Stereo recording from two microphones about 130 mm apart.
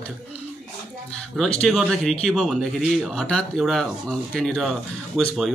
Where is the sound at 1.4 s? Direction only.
Centre (ahead or behind).